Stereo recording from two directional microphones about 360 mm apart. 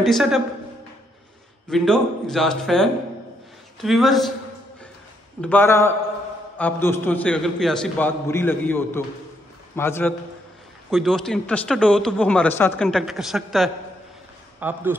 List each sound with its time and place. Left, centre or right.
0.0 s a man's voice: centre
1.7 s a man's voice: centre
5.4 s a man's voice: centre